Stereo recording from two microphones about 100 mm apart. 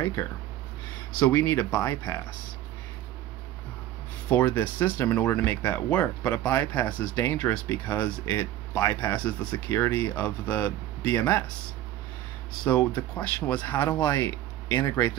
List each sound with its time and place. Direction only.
1.2 s speech: 20° left (ahead or behind)
4.3 s speech: 20° left (ahead or behind)
12.6 s speech: 10° left (ahead or behind)